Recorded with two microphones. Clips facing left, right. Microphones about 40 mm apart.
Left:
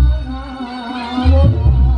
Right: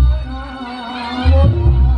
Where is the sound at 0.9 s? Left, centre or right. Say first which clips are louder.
Left 2 dB; centre.